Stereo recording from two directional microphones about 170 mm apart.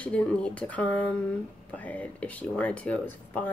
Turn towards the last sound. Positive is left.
turn(degrees=10)  # may be behind; listen again after turning